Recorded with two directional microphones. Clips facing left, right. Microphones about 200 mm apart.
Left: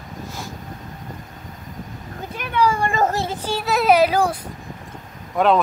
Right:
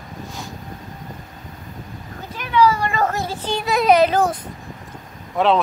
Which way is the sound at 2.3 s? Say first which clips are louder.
Right 3 dB; 50° left (ahead or behind).